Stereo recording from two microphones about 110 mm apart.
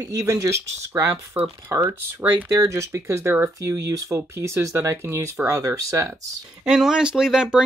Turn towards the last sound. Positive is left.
turn(degrees=-5)  # may be behind; listen again after turning